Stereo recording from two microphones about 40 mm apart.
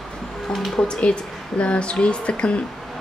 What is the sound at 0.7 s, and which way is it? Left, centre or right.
Speech, left.